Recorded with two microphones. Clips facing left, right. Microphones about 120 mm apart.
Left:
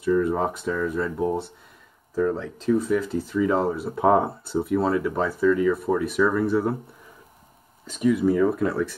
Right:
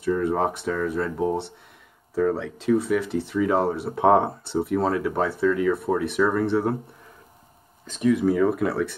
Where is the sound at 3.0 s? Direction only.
70° right (ahead or behind).